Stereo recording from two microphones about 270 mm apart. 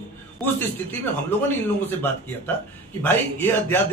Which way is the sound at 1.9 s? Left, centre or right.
Centre.